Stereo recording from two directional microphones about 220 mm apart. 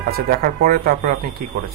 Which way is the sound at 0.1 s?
40° right (ahead or behind).